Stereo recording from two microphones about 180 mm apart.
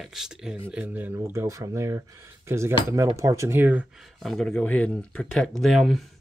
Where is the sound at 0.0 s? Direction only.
Centre (ahead or behind).